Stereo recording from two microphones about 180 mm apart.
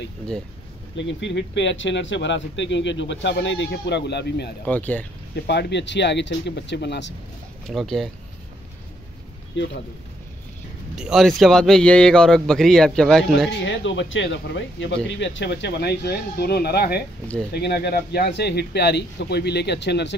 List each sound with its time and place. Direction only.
0.9 s speech: 80° left
4.6 s speech: 10° left (ahead or behind)
5.3 s speech: 70° left (ahead or behind)
7.6 s a man's voice: centre (ahead or behind)
9.6 s speech: 90° left
11.0 s a man's voice: centre (ahead or behind)
13.5 s speech: 75° left (ahead or behind)
15.0 s speech: 90° left; by 20.2 s 70° left (ahead or behind)